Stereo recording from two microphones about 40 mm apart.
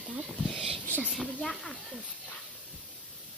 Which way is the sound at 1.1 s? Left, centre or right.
Centre.